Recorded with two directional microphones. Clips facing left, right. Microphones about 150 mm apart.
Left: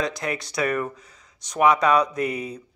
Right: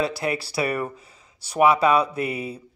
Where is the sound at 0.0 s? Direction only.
5° right (ahead or behind).